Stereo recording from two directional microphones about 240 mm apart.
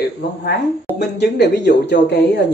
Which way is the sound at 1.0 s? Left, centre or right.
Left.